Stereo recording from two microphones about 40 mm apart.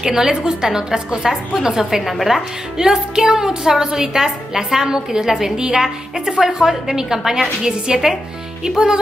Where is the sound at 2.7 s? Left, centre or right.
Centre.